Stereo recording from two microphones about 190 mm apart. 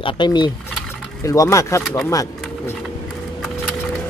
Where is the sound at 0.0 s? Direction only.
25° left (ahead or behind).